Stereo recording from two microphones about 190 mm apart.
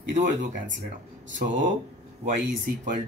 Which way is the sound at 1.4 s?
55° right (ahead or behind).